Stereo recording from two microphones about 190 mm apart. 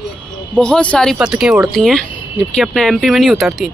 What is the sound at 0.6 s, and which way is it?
Speech, 5° left (ahead or behind).